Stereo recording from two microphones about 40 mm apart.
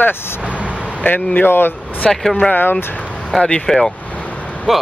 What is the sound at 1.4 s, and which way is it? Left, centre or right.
Speech, left.